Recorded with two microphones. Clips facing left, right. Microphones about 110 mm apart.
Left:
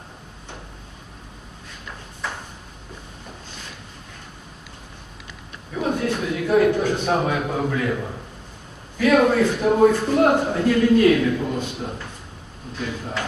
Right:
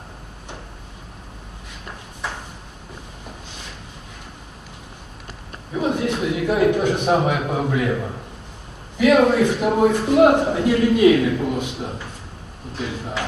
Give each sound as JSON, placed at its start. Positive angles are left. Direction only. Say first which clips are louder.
{"t": 5.8, "sound": "a man's voice", "louder": "right 2 dB", "side_deg": -20}
{"t": 8.9, "sound": "a man's voice", "louder": "right 2 dB", "side_deg": -15}